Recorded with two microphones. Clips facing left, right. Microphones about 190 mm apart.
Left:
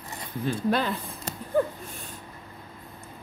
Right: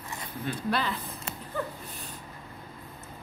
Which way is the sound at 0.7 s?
45° left (ahead or behind).